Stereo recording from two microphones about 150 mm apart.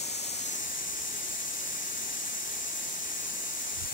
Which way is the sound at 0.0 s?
45° left (ahead or behind).